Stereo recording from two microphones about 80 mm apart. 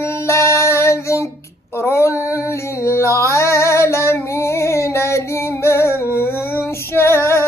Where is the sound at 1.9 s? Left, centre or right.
Left.